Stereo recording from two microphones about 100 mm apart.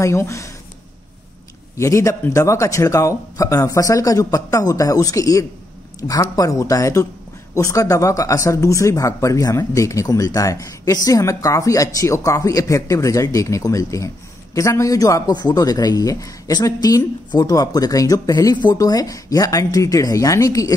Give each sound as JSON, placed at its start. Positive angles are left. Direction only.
{"t": 0.0, "sound": "speech", "side_deg": 30}
{"t": 1.8, "sound": "speech", "side_deg": 30}